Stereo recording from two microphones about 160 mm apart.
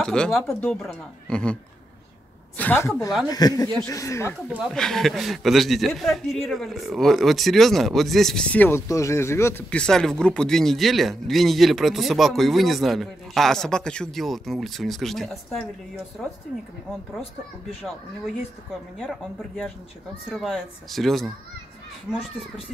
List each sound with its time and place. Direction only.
0.0 s a woman's voice: 5° left (ahead or behind)
3.3 s speech: 25° left (ahead or behind)
4.7 s speech: 5° left (ahead or behind)
17.8 s speech: centre (ahead or behind)